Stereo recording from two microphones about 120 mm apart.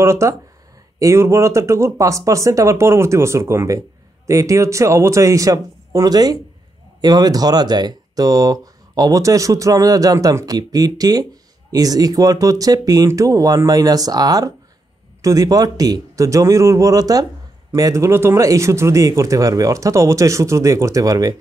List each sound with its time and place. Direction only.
0.0 s speech: 25° right (ahead or behind)